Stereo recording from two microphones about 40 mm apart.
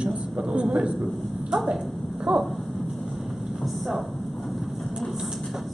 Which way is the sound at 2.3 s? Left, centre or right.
Right.